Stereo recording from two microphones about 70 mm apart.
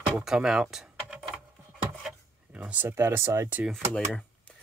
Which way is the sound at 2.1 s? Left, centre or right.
Centre.